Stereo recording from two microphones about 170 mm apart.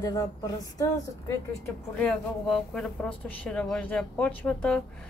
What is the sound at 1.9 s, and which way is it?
Speech, 5° left (ahead or behind).